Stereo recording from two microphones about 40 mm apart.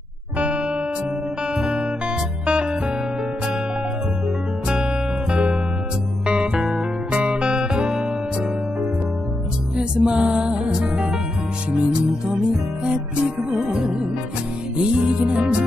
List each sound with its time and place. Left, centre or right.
0.4 s music: right
1.5 s guitar: centre
2.4 s music: right
5.3 s music: right
9.8 s music: right
13.6 s music: centre
14.8 s music: right